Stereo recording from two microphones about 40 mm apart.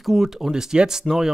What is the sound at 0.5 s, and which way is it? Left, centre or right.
Speech, centre.